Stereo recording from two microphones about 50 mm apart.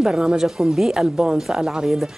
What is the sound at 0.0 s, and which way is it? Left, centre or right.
A woman's voice, centre.